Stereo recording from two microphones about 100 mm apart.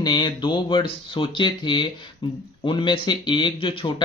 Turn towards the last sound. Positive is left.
turn(degrees=60)  # may be behind; listen again after turning